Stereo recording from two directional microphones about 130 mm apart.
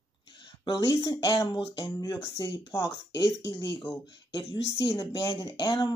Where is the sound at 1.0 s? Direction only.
35° left (ahead or behind).